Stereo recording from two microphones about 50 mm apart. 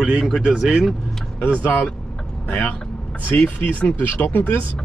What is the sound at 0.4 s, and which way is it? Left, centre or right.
Speech, right.